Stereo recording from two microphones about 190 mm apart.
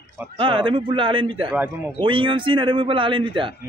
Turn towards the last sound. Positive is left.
turn(degrees=-25)  # may be behind; listen again after turning